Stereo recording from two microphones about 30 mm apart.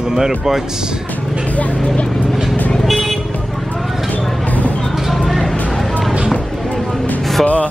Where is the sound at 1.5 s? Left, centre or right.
Left.